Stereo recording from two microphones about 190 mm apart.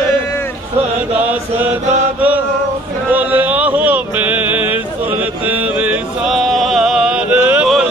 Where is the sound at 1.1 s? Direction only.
10° right (ahead or behind).